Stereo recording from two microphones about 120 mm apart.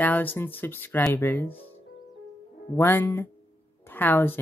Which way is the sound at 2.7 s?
20° left (ahead or behind).